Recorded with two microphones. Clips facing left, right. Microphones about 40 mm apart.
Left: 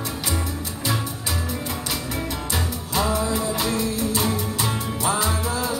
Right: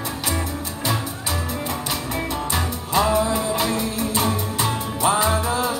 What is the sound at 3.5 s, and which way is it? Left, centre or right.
Music, right.